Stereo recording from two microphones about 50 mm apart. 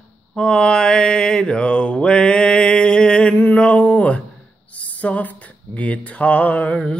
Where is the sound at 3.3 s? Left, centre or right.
Left.